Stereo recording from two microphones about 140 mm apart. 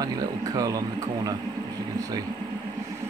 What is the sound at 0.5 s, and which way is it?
Speech, 25° right (ahead or behind).